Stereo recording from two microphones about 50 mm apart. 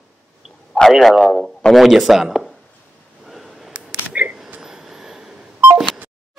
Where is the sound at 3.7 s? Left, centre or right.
Right.